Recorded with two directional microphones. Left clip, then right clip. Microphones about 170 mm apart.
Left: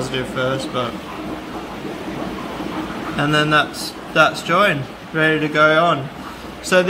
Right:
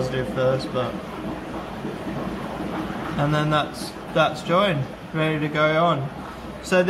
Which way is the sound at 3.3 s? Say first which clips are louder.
Left 8 dB; 15° left (ahead or behind).